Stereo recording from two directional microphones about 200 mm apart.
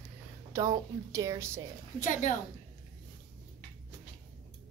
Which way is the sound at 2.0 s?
40° left (ahead or behind).